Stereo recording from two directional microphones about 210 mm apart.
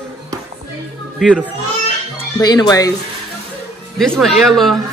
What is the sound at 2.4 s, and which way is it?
Speech, 20° left (ahead or behind).